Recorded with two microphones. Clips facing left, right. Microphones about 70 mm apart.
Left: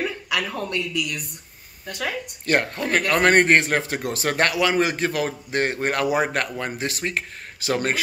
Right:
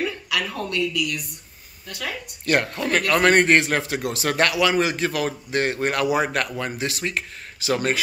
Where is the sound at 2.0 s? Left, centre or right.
Left.